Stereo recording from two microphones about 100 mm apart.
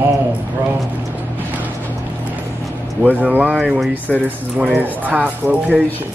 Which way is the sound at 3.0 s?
15° right (ahead or behind).